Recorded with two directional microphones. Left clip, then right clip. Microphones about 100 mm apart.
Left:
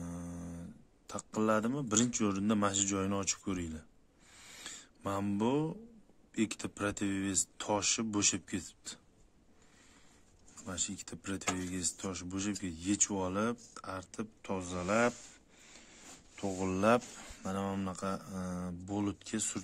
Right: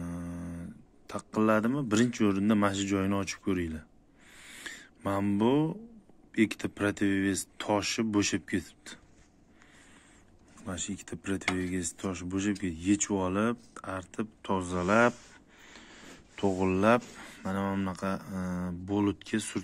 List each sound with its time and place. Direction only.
0.0 s speech: 35° left (ahead or behind)
4.4 s a sound: 50° left (ahead or behind)
4.6 s a sound: 25° left (ahead or behind)
5.4 s speech: 30° left (ahead or behind)
10.6 s speech: 30° left (ahead or behind)
14.2 s speech: 15° left (ahead or behind)
16.7 s speech: 35° left (ahead or behind)
17.8 s speech: 25° left (ahead or behind)